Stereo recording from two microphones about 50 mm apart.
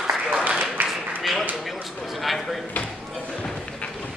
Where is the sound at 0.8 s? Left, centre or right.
Right.